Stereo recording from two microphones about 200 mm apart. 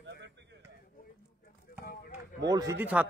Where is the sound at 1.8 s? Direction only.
50° left (ahead or behind).